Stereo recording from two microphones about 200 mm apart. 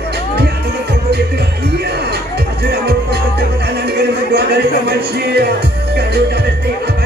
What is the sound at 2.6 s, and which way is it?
Music, 55° right (ahead or behind).